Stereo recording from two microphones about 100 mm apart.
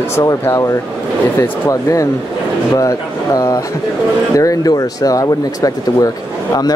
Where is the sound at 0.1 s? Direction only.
30° left (ahead or behind).